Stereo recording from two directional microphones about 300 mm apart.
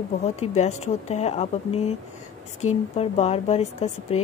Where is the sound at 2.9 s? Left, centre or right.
Left.